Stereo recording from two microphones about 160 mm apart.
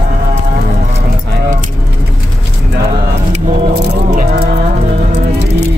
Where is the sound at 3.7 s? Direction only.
75° right (ahead or behind).